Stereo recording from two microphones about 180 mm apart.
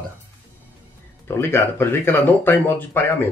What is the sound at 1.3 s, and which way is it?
Speech, 15° left (ahead or behind).